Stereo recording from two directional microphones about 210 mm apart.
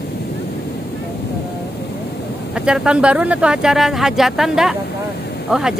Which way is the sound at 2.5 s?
5° right (ahead or behind).